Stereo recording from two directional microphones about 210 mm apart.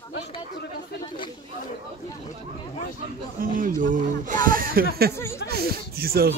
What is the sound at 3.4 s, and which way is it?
Speech, 40° right (ahead or behind).